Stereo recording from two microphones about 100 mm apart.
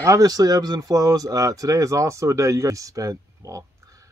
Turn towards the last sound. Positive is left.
turn(degrees=-35)  # may be behind; listen again after turning